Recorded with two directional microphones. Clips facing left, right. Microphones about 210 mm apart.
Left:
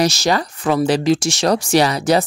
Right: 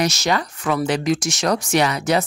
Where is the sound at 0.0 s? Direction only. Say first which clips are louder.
Left 3 dB; 30° left (ahead or behind).